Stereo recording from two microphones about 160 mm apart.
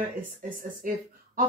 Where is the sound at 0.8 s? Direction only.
60° right (ahead or behind).